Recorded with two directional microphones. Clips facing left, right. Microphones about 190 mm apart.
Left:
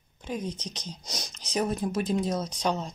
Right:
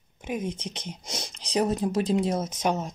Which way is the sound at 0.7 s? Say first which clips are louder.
Right 3 dB; 25° right (ahead or behind).